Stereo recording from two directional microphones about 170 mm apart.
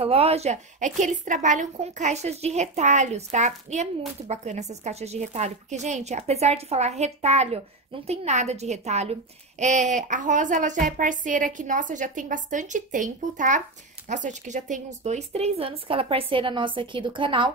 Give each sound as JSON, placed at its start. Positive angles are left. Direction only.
{"t": 0.0, "sound": "a woman's voice", "side_deg": -35}